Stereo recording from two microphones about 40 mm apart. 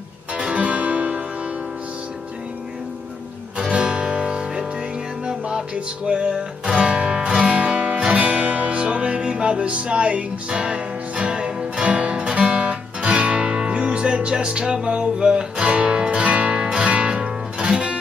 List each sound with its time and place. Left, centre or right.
0.4 s music: right
3.5 s music: right
6.0 s music: right
7.5 s music: right
8.7 s music: right